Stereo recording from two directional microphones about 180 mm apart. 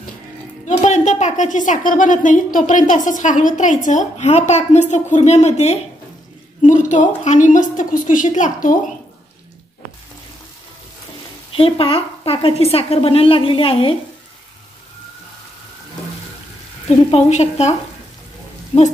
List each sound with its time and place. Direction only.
0.7 s a woman's voice: 40° left (ahead or behind)
11.5 s a woman's voice: 30° left (ahead or behind)
17.1 s a woman's voice: 35° left (ahead or behind)